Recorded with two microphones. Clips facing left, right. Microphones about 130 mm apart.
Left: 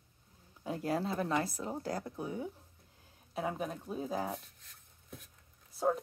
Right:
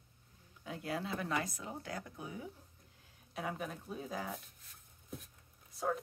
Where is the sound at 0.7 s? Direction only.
40° left (ahead or behind).